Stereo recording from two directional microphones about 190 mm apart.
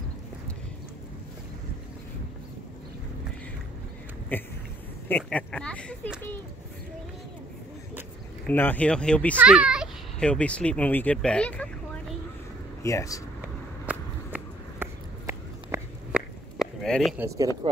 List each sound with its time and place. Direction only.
4.3 s speech: 10° left (ahead or behind)
8.5 s speech: 10° left (ahead or behind)
9.4 s speech: 5° right (ahead or behind)
12.8 s speech: 15° left (ahead or behind)
13.8 s a sound: 10° right (ahead or behind)